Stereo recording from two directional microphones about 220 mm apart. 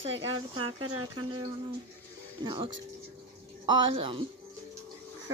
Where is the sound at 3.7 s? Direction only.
25° right (ahead or behind).